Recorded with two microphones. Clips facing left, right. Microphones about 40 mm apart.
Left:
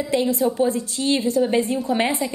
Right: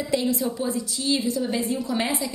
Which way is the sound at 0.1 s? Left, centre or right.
Left.